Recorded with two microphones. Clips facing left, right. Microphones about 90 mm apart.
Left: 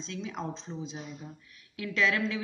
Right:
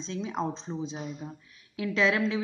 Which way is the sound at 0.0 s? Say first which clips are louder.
Right 5 dB; 30° right (ahead or behind).